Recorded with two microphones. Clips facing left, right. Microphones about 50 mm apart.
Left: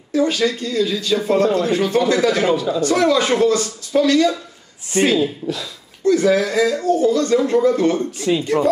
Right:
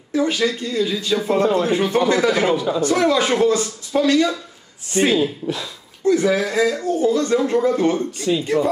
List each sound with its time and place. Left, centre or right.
0.1 s speech: centre
1.4 s speech: right
8.2 s speech: centre